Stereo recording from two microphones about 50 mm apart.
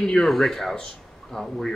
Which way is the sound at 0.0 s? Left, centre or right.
Centre.